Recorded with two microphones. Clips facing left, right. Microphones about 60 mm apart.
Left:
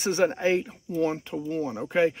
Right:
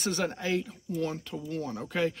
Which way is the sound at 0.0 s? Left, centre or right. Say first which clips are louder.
Left 7 dB; left.